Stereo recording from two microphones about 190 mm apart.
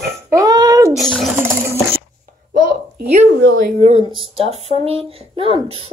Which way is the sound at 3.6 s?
35° right (ahead or behind).